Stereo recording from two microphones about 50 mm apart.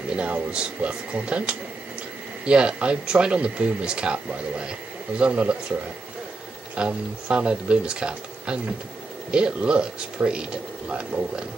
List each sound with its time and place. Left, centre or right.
0.1 s speech: right
6.7 s speech: right